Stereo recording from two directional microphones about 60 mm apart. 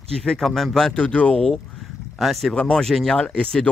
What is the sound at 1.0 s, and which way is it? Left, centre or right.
Speech, left.